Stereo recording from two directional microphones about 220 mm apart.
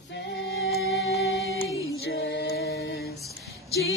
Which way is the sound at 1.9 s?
50° left (ahead or behind).